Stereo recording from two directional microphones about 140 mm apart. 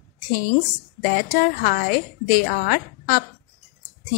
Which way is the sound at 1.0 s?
90° left.